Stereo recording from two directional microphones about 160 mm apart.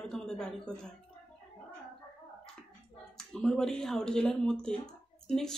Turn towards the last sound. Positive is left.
turn(degrees=5)  # may be behind; listen again after turning